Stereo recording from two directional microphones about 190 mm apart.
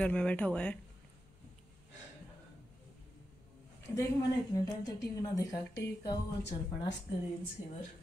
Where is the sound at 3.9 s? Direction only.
15° left (ahead or behind).